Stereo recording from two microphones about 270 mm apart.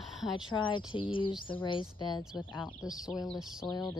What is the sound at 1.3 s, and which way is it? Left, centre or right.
Speech, centre.